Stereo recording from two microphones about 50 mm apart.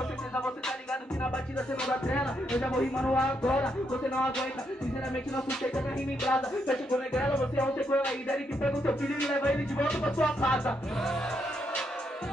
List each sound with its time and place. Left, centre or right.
2.5 s music: centre
5.3 s speech: centre
8.3 s music: centre
9.4 s speech: centre